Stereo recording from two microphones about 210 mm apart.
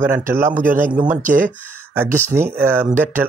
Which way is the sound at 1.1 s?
40° right (ahead or behind).